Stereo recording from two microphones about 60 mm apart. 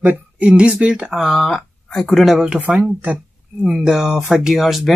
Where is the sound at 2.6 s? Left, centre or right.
Right.